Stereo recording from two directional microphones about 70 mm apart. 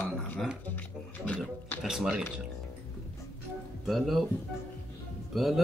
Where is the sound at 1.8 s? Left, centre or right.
Centre.